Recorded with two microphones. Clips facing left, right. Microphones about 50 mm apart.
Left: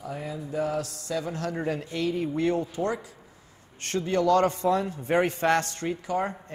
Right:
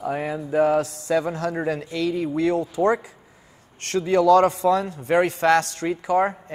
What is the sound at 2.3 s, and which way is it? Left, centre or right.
Speech, right.